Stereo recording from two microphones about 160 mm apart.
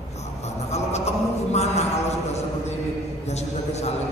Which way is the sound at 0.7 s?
45° left (ahead or behind).